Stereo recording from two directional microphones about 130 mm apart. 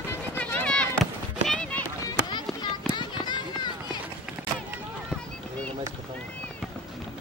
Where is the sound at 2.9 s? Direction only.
35° left (ahead or behind).